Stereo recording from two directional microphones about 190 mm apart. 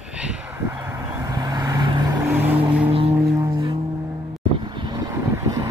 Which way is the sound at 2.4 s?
10° right (ahead or behind).